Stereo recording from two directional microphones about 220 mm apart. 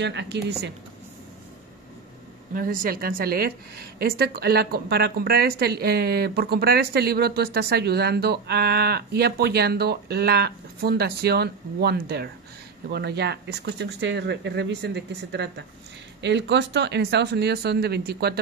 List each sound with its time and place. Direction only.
0.0 s a woman's voice: 50° right (ahead or behind)
2.5 s a woman's voice: 40° right (ahead or behind)